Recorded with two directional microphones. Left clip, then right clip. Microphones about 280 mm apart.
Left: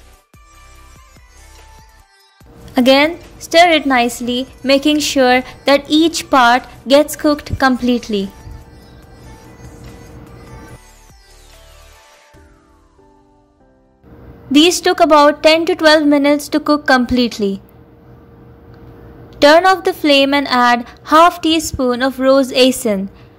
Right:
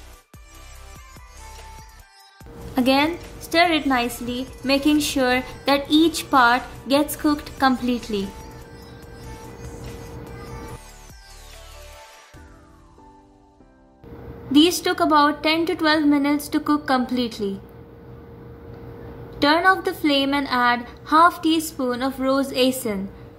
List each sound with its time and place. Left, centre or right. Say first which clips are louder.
2.7 s a woman's voice: left 8 dB; left
8.7 s music: even; centre
14.5 s a woman's voice: left 7 dB; left
19.3 s a woman's voice: left 9 dB; left